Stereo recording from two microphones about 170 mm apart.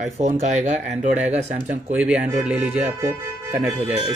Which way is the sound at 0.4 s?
45° right (ahead or behind).